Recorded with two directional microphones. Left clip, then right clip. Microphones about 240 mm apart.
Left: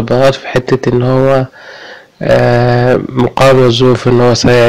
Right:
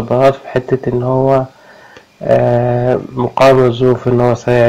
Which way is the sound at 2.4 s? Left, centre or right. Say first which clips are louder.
Left 3 dB; left.